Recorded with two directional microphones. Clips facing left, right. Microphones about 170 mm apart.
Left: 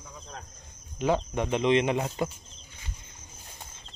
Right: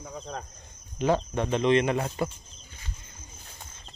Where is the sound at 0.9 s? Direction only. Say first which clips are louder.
Right 1 dB; 10° left (ahead or behind).